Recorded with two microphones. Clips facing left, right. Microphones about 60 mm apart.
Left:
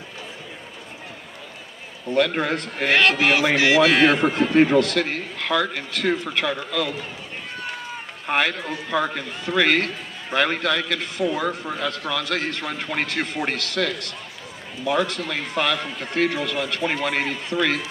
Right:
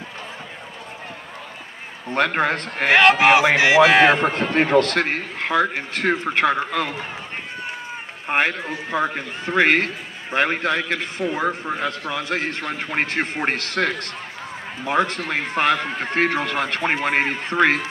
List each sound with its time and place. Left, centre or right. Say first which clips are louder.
2.1 s a man's voice: right 1 dB; right
2.9 s a man's voice: right 5 dB; right
4.2 s a man's voice: left 2 dB; right
8.3 s a man's voice: right 1 dB; right